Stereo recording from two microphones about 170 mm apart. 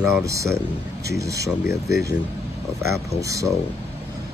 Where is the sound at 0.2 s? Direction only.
20° right (ahead or behind).